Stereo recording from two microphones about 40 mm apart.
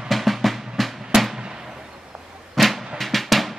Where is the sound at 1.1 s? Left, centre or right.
Centre.